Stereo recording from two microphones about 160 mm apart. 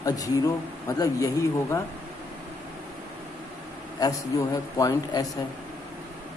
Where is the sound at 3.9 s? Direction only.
25° left (ahead or behind).